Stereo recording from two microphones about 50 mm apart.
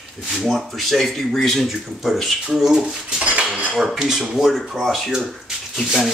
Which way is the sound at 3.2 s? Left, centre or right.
Right.